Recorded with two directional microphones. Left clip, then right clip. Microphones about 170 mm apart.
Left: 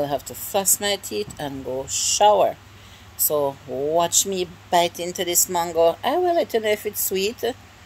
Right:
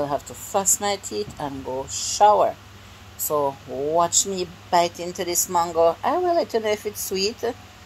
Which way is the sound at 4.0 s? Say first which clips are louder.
Even; 20° left (ahead or behind).